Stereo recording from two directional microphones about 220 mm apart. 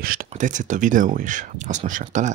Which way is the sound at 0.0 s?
40° right (ahead or behind).